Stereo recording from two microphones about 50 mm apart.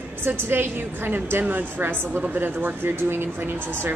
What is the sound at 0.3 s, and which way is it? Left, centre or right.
Speech, right.